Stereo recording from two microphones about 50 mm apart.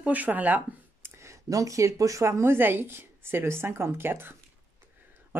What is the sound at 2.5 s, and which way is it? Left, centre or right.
A woman's voice, right.